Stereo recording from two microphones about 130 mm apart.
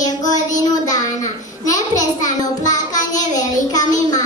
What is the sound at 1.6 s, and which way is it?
A child's voice, 25° left (ahead or behind).